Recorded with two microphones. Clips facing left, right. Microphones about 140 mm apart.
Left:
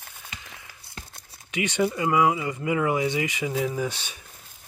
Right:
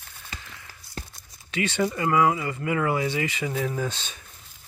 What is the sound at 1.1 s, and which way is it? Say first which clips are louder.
Tearing: left 3 dB; 60° left (ahead or behind).